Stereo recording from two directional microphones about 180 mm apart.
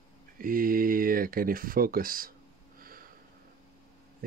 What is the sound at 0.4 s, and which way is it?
Speech, 50° right (ahead or behind).